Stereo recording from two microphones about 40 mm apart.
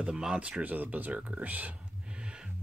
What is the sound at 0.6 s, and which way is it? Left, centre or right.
Speech, right.